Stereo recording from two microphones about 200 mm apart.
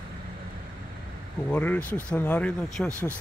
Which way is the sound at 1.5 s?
10° left (ahead or behind).